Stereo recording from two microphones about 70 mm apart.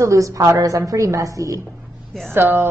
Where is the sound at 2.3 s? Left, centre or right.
Right.